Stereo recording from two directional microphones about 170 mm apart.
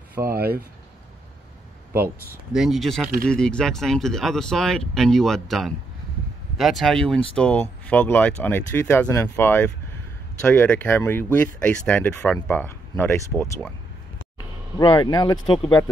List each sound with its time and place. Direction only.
0.3 s speech: 60° right (ahead or behind)
2.0 s speech: 15° right (ahead or behind)
2.5 s speech: centre (ahead or behind); by 13.7 s 15° left (ahead or behind)
14.8 s speech: 25° left (ahead or behind)